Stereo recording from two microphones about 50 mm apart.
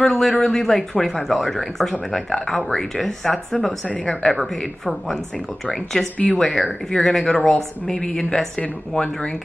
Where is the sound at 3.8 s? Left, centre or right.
Left.